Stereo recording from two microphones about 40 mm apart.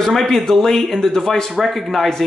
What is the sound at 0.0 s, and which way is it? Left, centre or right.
Speech, centre.